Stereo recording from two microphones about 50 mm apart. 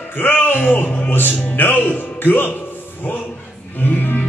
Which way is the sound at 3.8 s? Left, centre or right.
Left.